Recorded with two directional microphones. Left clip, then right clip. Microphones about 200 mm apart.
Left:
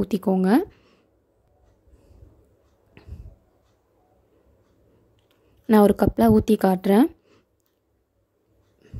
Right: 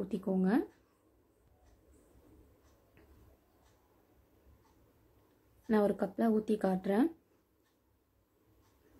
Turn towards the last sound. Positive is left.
turn(degrees=55)  # may be behind; listen again after turning